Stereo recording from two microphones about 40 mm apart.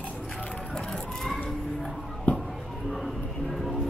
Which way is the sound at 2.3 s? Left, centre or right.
Left.